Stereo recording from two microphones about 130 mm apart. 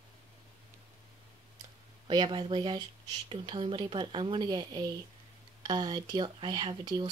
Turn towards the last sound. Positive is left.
turn(degrees=-45)  # may be behind; listen again after turning